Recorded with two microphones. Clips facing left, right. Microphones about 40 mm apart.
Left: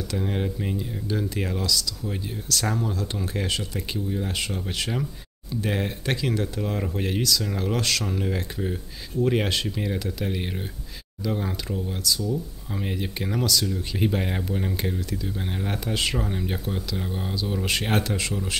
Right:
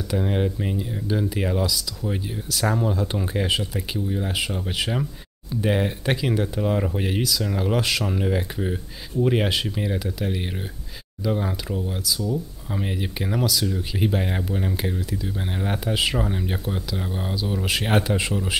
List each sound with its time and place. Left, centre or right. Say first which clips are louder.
0.1 s speech: right 5 dB; centre
18.0 s speech: right 4 dB; centre